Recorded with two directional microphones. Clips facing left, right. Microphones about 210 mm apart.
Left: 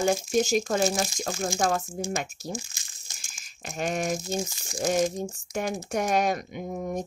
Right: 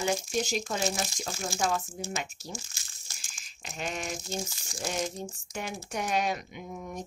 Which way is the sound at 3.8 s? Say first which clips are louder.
Left 8 dB; 45° left (ahead or behind).